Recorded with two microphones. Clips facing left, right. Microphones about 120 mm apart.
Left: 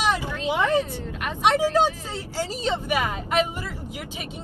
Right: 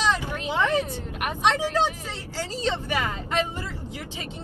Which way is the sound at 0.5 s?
15° left (ahead or behind).